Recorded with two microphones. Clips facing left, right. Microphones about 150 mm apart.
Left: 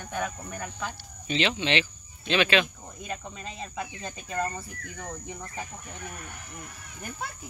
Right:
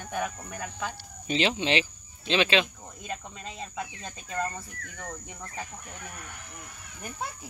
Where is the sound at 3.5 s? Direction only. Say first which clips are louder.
Even; centre (ahead or behind).